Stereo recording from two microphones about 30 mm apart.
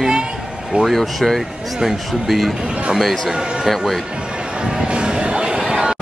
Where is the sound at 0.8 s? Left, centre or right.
Centre.